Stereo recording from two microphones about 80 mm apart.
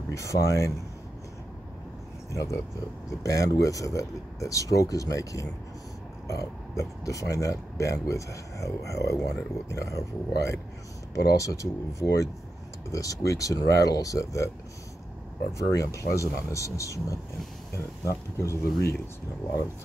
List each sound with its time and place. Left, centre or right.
0.1 s speech: left
2.3 s speech: left
15.5 s speech: left